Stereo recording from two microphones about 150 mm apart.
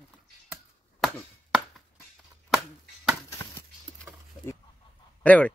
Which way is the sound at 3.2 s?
20° left (ahead or behind).